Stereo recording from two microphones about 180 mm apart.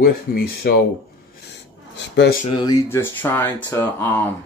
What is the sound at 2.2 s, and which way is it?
Speech, 60° left (ahead or behind).